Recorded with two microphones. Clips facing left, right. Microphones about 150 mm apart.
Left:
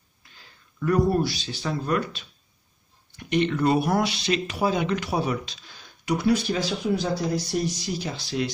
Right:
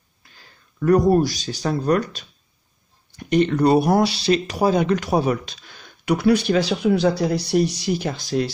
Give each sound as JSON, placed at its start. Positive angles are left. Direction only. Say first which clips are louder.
{"t": 0.4, "sound": "speech", "louder": "right 5 dB", "side_deg": -45}